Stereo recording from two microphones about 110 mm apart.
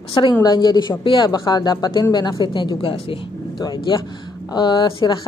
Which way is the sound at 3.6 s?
35° left (ahead or behind).